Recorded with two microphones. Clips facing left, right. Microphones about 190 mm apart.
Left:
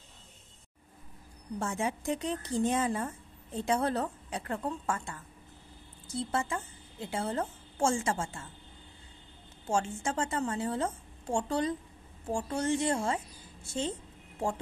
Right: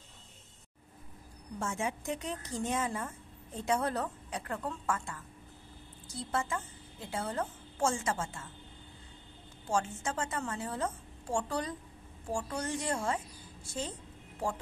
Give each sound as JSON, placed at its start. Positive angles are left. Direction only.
{"t": 1.6, "sound": "a woman's voice", "side_deg": 35}
{"t": 9.7, "sound": "a woman's voice", "side_deg": 25}